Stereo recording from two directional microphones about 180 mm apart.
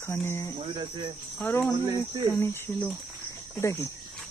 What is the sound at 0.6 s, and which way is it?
Cricket, 30° right (ahead or behind).